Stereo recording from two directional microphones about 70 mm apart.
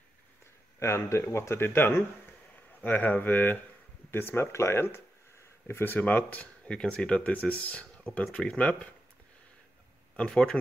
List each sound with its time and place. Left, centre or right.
0.7 s speech: left
6.8 s speech: centre
10.1 s speech: centre